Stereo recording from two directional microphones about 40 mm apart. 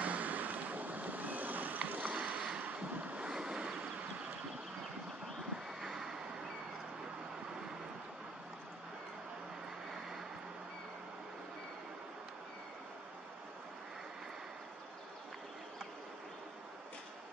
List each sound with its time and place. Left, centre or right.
0.0 s boat: right
2.6 s vehicle: right
3.3 s waves: right
3.7 s vehicle: right
5.8 s vehicle: centre